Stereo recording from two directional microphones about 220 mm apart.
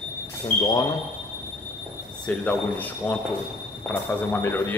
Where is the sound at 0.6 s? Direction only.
15° left (ahead or behind).